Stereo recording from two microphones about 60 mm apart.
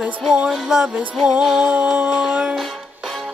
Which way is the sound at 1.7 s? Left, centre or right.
Right.